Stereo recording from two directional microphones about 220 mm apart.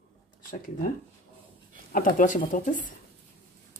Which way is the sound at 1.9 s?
35° left (ahead or behind).